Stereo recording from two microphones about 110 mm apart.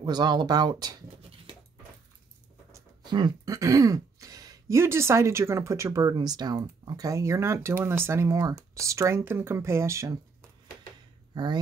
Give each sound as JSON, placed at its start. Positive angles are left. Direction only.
{"t": 0.0, "sound": "speech", "side_deg": -40}
{"t": 3.1, "sound": "speech", "side_deg": -40}
{"t": 11.3, "sound": "speech", "side_deg": -40}